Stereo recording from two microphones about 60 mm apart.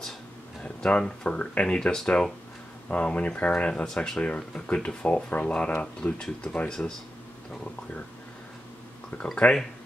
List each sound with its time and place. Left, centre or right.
0.8 s speech: centre
3.8 s speech: centre
9.3 s speech: centre